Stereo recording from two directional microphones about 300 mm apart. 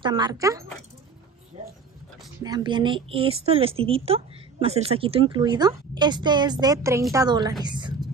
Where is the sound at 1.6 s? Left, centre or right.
Centre.